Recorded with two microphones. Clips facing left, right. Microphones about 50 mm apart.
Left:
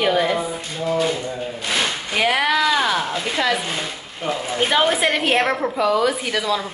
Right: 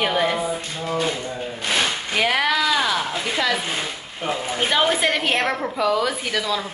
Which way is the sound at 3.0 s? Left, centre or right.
Centre.